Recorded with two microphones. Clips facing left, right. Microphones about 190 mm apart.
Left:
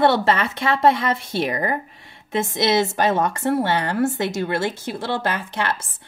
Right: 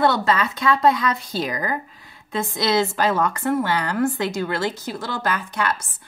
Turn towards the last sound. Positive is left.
turn(degrees=25)  # may be behind; listen again after turning